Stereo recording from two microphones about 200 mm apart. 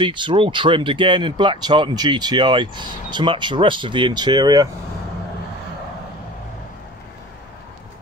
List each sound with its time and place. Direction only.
0.0 s speech: 25° right (ahead or behind)